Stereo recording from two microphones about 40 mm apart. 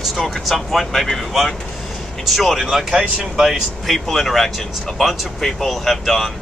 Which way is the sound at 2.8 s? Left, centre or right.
Centre.